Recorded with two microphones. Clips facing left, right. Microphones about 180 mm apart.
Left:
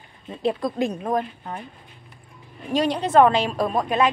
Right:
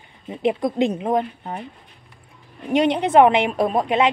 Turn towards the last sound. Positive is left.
turn(degrees=-25)  # may be behind; listen again after turning